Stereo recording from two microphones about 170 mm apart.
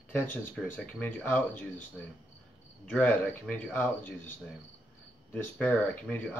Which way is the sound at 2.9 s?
10° left (ahead or behind).